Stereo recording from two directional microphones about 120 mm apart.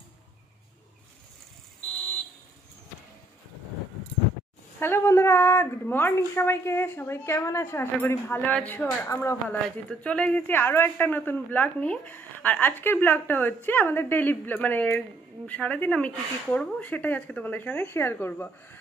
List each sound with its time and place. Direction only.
4.7 s a woman's voice: 20° left (ahead or behind)
9.8 s a woman's voice: 10° left (ahead or behind)